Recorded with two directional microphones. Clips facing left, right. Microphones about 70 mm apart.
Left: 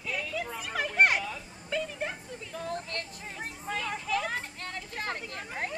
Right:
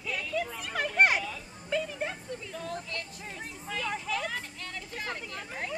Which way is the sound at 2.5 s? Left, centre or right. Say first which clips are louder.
Left 4 dB; left.